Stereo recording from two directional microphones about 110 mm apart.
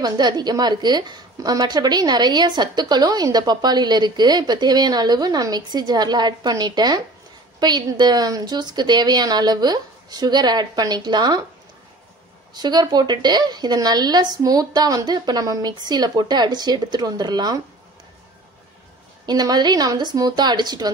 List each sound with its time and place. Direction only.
0.0 s a woman's voice: 40° right (ahead or behind)
12.5 s a woman's voice: 40° right (ahead or behind)
19.2 s a woman's voice: 40° right (ahead or behind)